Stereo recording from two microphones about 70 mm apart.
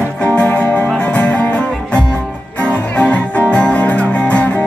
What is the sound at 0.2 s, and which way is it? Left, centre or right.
Music, centre.